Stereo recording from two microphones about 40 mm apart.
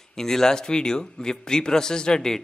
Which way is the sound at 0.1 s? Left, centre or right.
Centre.